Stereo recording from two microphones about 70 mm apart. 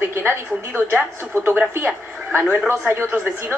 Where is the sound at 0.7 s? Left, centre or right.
Right.